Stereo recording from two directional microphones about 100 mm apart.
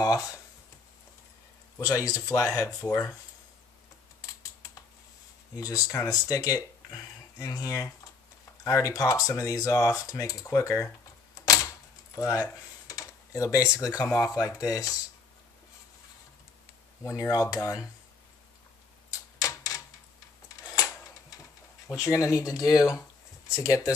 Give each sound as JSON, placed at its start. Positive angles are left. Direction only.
{"t": 0.0, "sound": "speech", "side_deg": 35}
{"t": 1.8, "sound": "speech", "side_deg": 35}
{"t": 2.9, "sound": "speech", "side_deg": 15}
{"t": 5.6, "sound": "speech", "side_deg": 35}
{"t": 11.4, "sound": "typewriter", "side_deg": 35}
{"t": 12.8, "sound": "typing", "side_deg": 35}
{"t": 13.7, "sound": "speech", "side_deg": 35}
{"t": 17.0, "sound": "speech", "side_deg": 35}
{"t": 19.3, "sound": "typewriter", "side_deg": 35}
{"t": 20.7, "sound": "a sound", "side_deg": 35}
{"t": 21.8, "sound": "speech", "side_deg": 30}